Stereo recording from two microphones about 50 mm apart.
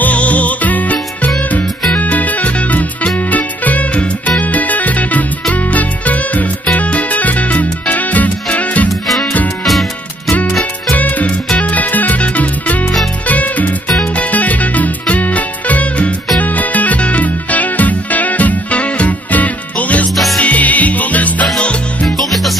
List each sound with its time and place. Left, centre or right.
0.0 s music: left
9.7 s music: centre
10.6 s music: left
22.0 s music: centre